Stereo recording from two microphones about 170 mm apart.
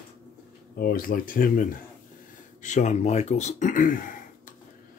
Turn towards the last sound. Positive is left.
turn(degrees=50)  # may be behind; listen again after turning